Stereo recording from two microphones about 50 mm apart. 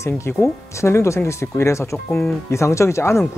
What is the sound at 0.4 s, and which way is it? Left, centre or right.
Speech, left.